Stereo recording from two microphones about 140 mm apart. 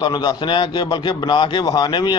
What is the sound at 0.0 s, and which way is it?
A man's voice, 30° left (ahead or behind).